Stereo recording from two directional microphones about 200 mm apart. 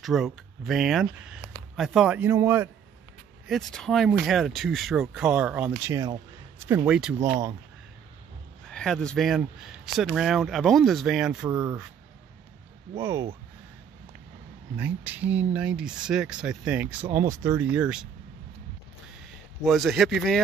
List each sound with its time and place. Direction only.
0.0 s speech: centre (ahead or behind)
3.4 s speech: centre (ahead or behind)
7.2 s speech: 15° right (ahead or behind)
8.6 s speech: 5° left (ahead or behind)
12.9 s speech: 15° right (ahead or behind)
14.8 s speech: 10° right (ahead or behind)
19.6 s speech: centre (ahead or behind)